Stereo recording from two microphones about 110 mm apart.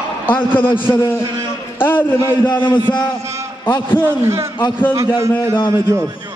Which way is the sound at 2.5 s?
45° left (ahead or behind).